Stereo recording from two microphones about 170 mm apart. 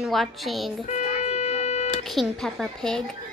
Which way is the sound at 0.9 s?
40° left (ahead or behind).